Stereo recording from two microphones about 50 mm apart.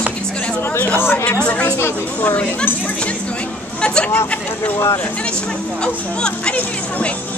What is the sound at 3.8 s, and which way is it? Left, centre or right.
Chatter, left.